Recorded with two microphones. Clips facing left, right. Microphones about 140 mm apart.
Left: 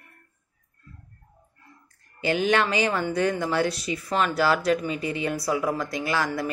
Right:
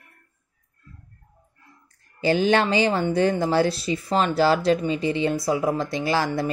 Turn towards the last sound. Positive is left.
turn(degrees=-30)  # may be behind; listen again after turning